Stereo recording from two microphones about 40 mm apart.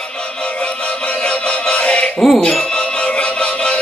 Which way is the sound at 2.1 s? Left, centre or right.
Centre.